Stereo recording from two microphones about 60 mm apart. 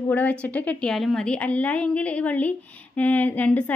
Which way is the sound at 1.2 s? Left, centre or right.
Left.